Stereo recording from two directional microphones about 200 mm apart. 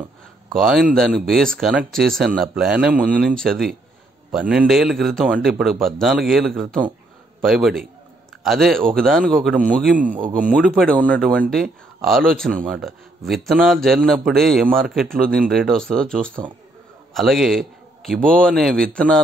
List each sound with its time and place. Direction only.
0.5 s a man's voice: centre (ahead or behind)
9.9 s a man's voice: 40° right (ahead or behind)
10.8 s a man's voice: centre (ahead or behind)